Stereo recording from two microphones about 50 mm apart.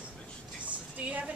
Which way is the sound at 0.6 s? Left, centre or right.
Right.